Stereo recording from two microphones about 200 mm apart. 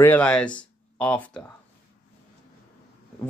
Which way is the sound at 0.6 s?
5° left (ahead or behind).